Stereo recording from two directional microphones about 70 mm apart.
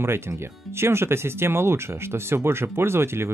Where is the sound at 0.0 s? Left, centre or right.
Right.